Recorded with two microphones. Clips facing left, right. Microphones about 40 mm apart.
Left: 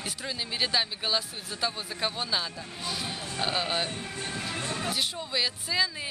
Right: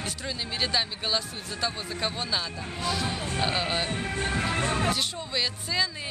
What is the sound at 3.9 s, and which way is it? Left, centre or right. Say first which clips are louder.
Speech: right 6 dB; right.